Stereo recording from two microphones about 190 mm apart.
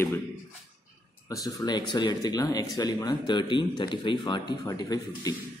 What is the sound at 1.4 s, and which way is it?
Speech, 20° left (ahead or behind).